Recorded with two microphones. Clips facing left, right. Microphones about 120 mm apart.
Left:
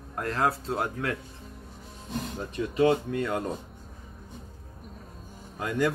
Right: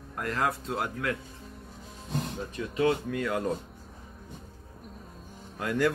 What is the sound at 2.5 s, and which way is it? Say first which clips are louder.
Speech: left 4 dB; 30° left (ahead or behind).